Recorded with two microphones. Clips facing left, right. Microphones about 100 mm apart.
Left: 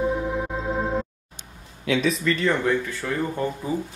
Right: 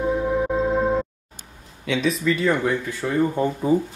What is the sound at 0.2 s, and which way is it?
Music, centre (ahead or behind).